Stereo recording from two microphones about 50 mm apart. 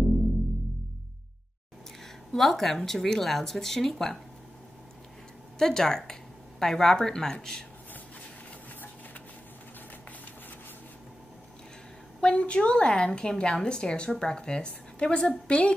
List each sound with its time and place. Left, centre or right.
2.3 s a woman's voice: centre
5.6 s a woman's voice: centre
12.2 s a woman's voice: left